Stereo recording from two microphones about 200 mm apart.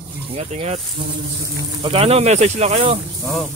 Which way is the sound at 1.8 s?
30° right (ahead or behind).